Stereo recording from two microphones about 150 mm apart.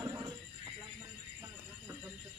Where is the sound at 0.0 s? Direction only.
20° right (ahead or behind).